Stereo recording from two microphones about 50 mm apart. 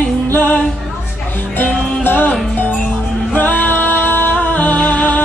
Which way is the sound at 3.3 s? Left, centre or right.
Left.